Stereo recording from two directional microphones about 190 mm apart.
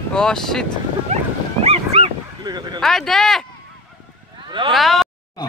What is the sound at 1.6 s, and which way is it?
Dog, 30° right (ahead or behind).